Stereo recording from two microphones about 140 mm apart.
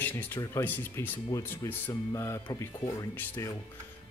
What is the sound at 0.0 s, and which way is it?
Speech, 15° left (ahead or behind).